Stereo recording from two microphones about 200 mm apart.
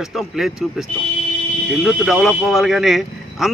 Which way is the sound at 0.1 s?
Centre (ahead or behind).